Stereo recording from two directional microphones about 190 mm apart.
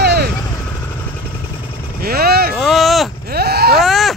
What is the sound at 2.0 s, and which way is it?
Vehicle, 50° right (ahead or behind).